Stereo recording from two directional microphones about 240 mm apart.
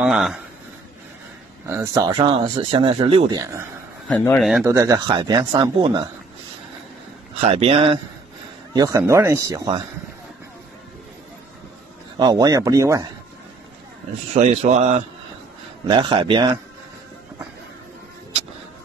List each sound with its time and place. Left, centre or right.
0.0 s speech: centre
1.7 s speech: centre
4.1 s speech: centre
4.6 s speech: centre
7.3 s speech: right
12.2 s speech: centre
14.3 s speech: right